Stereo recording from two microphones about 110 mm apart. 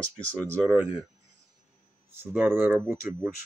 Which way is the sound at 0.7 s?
25° right (ahead or behind).